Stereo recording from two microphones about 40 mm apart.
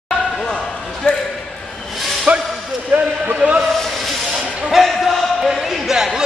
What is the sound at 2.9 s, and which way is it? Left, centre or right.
Speech, right.